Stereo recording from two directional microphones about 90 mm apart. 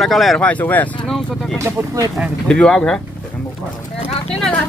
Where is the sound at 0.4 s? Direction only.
15° left (ahead or behind).